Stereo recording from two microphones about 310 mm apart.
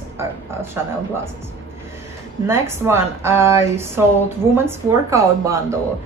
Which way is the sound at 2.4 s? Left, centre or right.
Centre.